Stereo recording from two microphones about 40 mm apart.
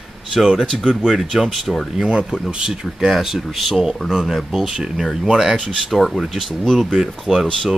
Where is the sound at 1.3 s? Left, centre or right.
Centre.